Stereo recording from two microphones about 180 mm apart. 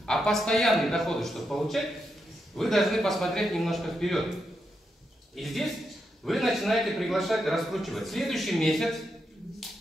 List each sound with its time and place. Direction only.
0.0 s a man's voice: 5° left (ahead or behind)
5.3 s a man's voice: centre (ahead or behind)